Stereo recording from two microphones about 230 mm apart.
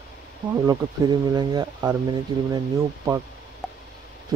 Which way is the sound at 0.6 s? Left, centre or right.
Centre.